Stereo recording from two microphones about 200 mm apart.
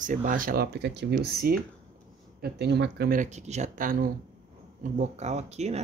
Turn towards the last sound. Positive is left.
turn(degrees=-35)  # may be behind; listen again after turning